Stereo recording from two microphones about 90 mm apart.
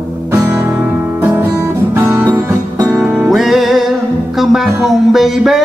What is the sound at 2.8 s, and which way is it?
Music, 35° right (ahead or behind).